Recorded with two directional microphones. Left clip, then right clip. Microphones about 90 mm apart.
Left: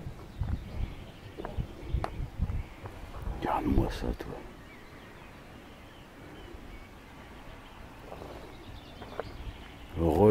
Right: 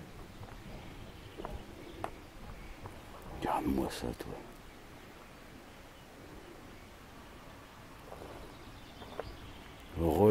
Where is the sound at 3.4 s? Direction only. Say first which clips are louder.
Left 3 dB; 15° right (ahead or behind).